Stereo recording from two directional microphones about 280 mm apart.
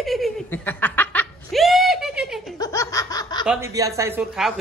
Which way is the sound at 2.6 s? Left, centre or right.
Centre.